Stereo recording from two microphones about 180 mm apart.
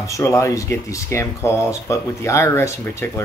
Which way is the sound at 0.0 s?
15° left (ahead or behind).